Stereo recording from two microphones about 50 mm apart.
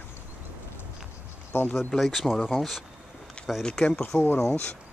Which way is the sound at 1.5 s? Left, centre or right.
Left.